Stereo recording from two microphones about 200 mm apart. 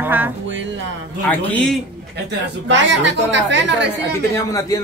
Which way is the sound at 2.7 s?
65° right (ahead or behind).